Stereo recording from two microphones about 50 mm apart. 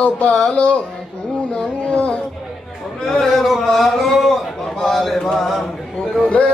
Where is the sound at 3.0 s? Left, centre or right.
Centre.